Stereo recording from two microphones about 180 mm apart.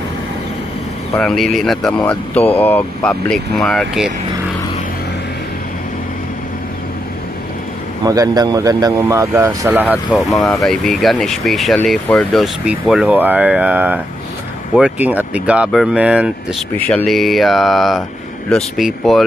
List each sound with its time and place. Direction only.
1.1 s speech: centre (ahead or behind)
8.0 s speech: 20° right (ahead or behind)
16.7 s speech: 5° left (ahead or behind)